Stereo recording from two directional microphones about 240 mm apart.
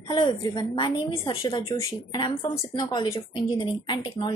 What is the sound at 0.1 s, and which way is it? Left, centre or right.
A woman's voice, centre.